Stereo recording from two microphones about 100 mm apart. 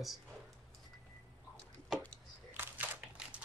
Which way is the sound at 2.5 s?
20° right (ahead or behind).